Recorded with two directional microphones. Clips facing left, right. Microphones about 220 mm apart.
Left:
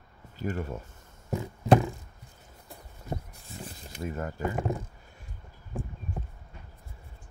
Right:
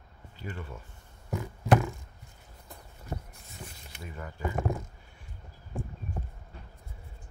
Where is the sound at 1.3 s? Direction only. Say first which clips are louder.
Left 3 dB; 25° left (ahead or behind).